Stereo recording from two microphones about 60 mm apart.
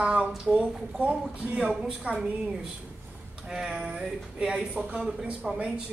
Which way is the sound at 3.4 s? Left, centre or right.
Centre.